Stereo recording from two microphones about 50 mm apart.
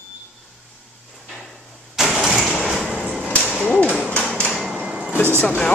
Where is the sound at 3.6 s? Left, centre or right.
Left.